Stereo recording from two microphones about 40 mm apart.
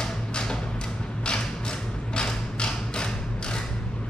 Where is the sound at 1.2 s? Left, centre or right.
Left.